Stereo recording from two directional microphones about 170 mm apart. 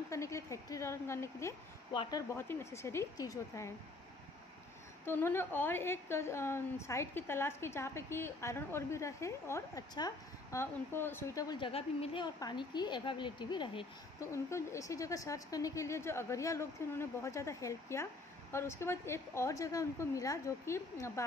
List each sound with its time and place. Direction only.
0.1 s a woman's voice: 15° left (ahead or behind)
5.0 s a woman's voice: 15° left (ahead or behind)
11.7 s a woman's voice: 35° left (ahead or behind)
14.3 s a woman's voice: 15° left (ahead or behind)